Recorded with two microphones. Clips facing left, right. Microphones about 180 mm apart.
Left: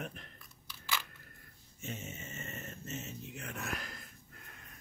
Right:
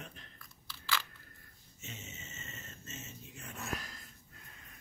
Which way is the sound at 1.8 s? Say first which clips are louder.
Left 6 dB; 55° left (ahead or behind).